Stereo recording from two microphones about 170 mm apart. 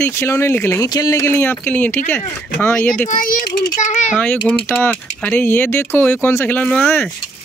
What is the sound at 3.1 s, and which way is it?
A child's voice, 55° left (ahead or behind).